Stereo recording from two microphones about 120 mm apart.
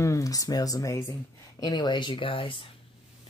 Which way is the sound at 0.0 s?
25° left (ahead or behind).